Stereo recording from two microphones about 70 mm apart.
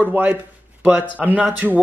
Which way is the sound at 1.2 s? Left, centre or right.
Centre.